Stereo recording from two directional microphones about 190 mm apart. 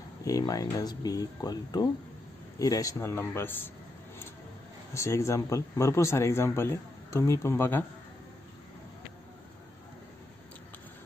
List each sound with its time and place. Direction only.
0.2 s speech: 20° left (ahead or behind)
4.9 s speech: 15° left (ahead or behind)